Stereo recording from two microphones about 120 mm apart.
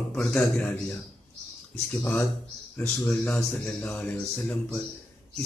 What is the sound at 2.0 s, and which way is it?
A man's voice, 15° left (ahead or behind).